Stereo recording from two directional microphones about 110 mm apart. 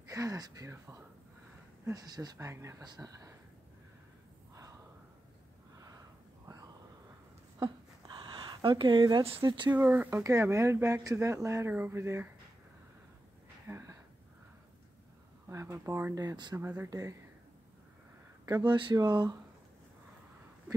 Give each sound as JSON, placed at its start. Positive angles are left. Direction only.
{"t": 0.1, "sound": "speech", "side_deg": -30}
{"t": 2.3, "sound": "speech", "side_deg": -25}
{"t": 2.8, "sound": "speech", "side_deg": -35}
{"t": 6.4, "sound": "a sound", "side_deg": -30}
{"t": 7.6, "sound": "a sound", "side_deg": -45}
{"t": 8.5, "sound": "speech", "side_deg": -50}
{"t": 9.8, "sound": "speech", "side_deg": -15}
{"t": 13.7, "sound": "a sound", "side_deg": -25}
{"t": 15.4, "sound": "speech", "side_deg": -30}
{"t": 16.2, "sound": "speech", "side_deg": -40}
{"t": 16.5, "sound": "speech", "side_deg": -20}
{"t": 18.6, "sound": "speech", "side_deg": -45}